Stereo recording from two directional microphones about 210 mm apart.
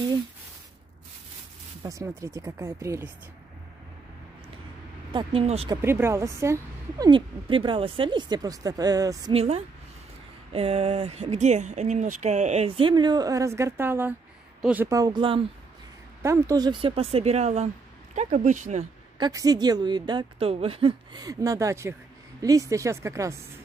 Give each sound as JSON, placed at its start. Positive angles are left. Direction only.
{"t": 1.8, "sound": "a woman's voice", "side_deg": -15}
{"t": 5.1, "sound": "speech", "side_deg": -25}
{"t": 5.8, "sound": "a woman's voice", "side_deg": -10}
{"t": 9.3, "sound": "a woman's voice", "side_deg": -30}
{"t": 19.1, "sound": "a woman's voice", "side_deg": -20}